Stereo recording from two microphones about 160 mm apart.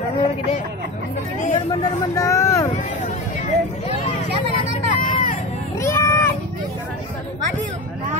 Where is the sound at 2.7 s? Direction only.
45° left (ahead or behind).